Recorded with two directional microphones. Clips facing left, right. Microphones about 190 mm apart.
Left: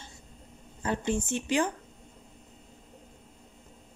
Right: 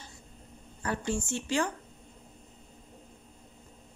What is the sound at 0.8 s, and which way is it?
Speech, 20° left (ahead or behind).